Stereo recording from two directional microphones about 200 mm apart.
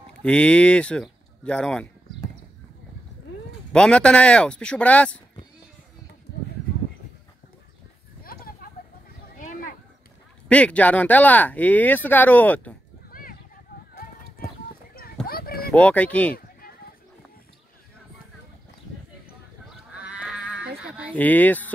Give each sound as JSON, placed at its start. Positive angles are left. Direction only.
{"t": 0.2, "sound": "speech", "side_deg": 5}
{"t": 3.7, "sound": "speech", "side_deg": 5}
{"t": 9.4, "sound": "a sound", "side_deg": 40}
{"t": 10.5, "sound": "speech", "side_deg": 5}
{"t": 13.1, "sound": "a sound", "side_deg": 45}
{"t": 15.2, "sound": "a sound", "side_deg": 50}
{"t": 15.7, "sound": "speech", "side_deg": 5}
{"t": 20.0, "sound": "livestock", "side_deg": -5}
{"t": 21.1, "sound": "speech", "side_deg": 10}